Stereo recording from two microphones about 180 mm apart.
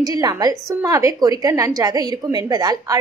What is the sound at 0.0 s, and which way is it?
A woman's voice, 20° right (ahead or behind).